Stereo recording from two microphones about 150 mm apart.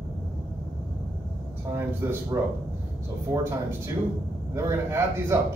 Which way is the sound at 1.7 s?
15° right (ahead or behind).